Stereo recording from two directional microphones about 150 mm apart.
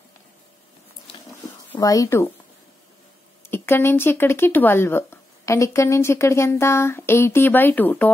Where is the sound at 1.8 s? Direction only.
25° left (ahead or behind).